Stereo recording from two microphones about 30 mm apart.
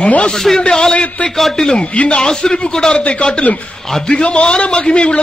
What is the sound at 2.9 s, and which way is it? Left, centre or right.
A man's voice, left.